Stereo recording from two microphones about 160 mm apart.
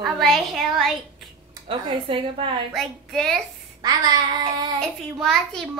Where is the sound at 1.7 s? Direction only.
30° right (ahead or behind).